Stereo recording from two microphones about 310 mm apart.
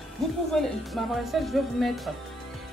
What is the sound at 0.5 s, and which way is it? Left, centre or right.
Speech, centre.